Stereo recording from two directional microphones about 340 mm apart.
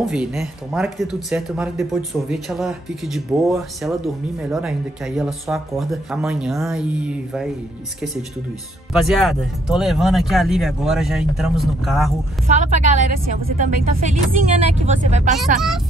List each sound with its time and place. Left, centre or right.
0.0 s speech: centre
8.9 s speech: centre
12.4 s speech: right